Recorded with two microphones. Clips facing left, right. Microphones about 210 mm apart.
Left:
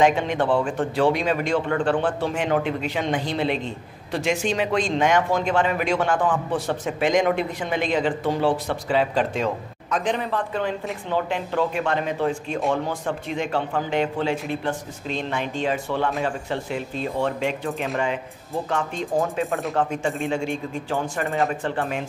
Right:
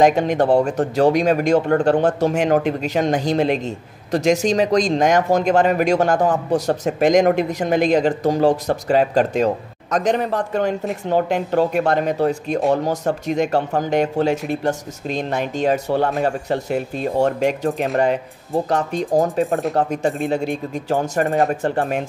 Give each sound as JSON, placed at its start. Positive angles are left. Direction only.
{"t": 0.0, "sound": "a man's voice", "side_deg": -40}